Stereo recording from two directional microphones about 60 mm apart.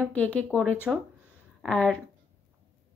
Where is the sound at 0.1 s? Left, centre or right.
Left.